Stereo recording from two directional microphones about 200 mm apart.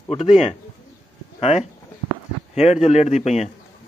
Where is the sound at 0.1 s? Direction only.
30° left (ahead or behind).